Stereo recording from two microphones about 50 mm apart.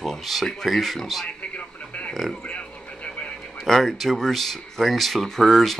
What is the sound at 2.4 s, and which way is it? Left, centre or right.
Vehicle, left.